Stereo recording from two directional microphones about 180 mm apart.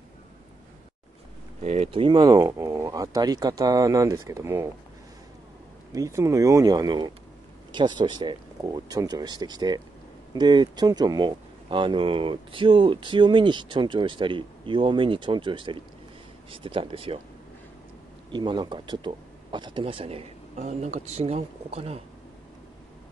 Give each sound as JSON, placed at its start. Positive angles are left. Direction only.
{"t": 1.6, "sound": "speech", "side_deg": -35}
{"t": 5.9, "sound": "speech", "side_deg": -15}
{"t": 18.3, "sound": "speech", "side_deg": -25}